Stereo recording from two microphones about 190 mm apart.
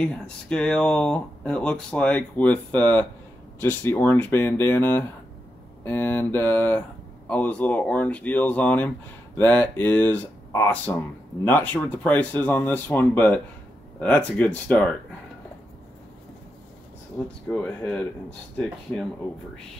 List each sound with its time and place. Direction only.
0.0 s speech: 5° left (ahead or behind)
17.5 s speech: 5° left (ahead or behind)